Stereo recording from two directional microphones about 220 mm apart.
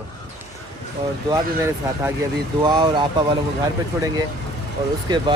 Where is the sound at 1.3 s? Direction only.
15° right (ahead or behind).